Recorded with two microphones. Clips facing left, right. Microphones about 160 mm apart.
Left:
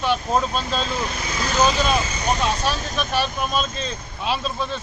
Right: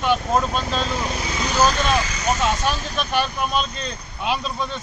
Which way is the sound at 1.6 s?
5° left (ahead or behind).